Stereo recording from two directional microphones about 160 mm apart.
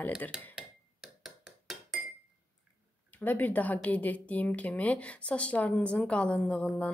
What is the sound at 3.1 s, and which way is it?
Speech, 10° left (ahead or behind).